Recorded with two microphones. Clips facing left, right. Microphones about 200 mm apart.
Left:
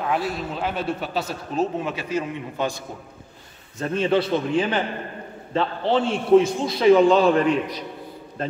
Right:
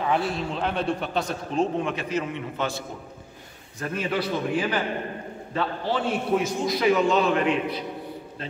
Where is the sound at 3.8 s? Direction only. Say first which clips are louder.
Left 6 dB; 25° left (ahead or behind).